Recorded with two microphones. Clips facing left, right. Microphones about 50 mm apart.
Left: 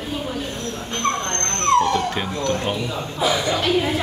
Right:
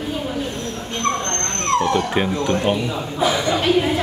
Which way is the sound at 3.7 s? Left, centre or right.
Centre.